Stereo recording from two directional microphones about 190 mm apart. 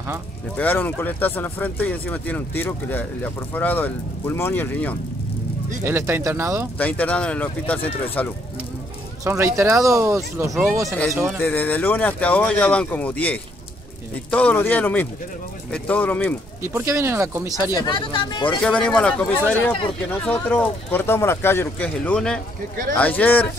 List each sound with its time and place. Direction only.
0.6 s speech: 10° left (ahead or behind)
5.9 s speech: 10° right (ahead or behind)
6.8 s speech: 10° left (ahead or behind)
9.2 s speech: 15° right (ahead or behind)
11.3 s speech: 10° left (ahead or behind)
16.6 s speech: 15° right (ahead or behind)
17.7 s speech: 25° left (ahead or behind)
18.6 s speech: 5° left (ahead or behind)